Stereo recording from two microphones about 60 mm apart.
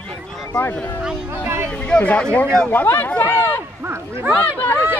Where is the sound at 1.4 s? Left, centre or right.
Right.